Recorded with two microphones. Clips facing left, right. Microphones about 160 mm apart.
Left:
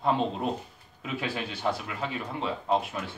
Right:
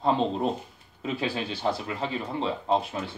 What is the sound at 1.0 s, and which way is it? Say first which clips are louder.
Speech: right 3 dB; 30° right (ahead or behind).